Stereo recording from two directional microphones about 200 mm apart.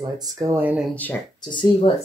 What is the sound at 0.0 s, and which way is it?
Speech, 20° right (ahead or behind).